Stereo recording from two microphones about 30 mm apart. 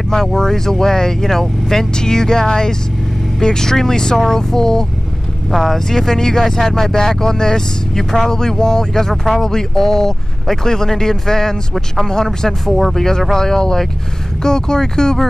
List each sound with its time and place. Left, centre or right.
0.1 s speech: centre
5.5 s speech: centre
9.1 s speech: centre
9.4 s speech: centre
12.7 s speech: centre
13.4 s speech: centre